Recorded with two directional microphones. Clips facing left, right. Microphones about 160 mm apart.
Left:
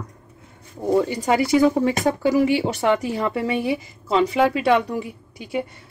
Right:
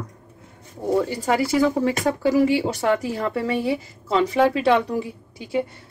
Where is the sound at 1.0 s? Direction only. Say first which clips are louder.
Left 1 dB; 20° left (ahead or behind).